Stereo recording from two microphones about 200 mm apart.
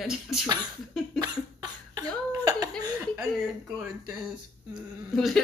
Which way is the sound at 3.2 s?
5° right (ahead or behind).